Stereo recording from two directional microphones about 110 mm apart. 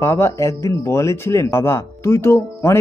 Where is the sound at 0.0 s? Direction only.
30° left (ahead or behind).